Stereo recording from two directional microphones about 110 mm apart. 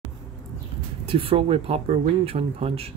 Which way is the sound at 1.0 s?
55° right (ahead or behind).